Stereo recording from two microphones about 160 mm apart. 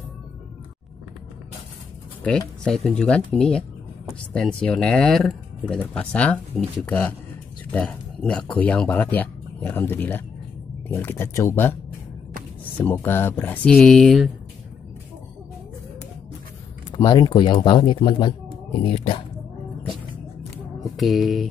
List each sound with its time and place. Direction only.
2.2 s speech: 5° left (ahead or behind)
12.7 s speech: 15° left (ahead or behind)
16.9 s speech: 30° left (ahead or behind)
20.9 s speech: centre (ahead or behind)